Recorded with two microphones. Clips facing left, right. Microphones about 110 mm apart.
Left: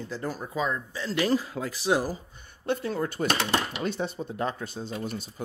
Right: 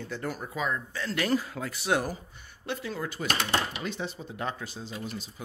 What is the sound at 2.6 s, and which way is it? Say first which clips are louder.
Speech: left 6 dB; 45° left (ahead or behind).